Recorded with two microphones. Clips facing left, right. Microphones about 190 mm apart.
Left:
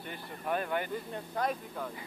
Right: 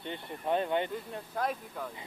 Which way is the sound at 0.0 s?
25° right (ahead or behind).